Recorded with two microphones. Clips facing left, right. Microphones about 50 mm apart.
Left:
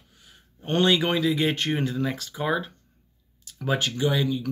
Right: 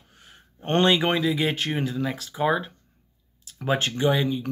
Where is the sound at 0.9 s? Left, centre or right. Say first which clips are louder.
Even; centre.